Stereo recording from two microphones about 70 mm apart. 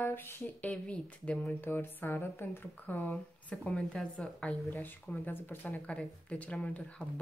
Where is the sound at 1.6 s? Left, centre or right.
Left.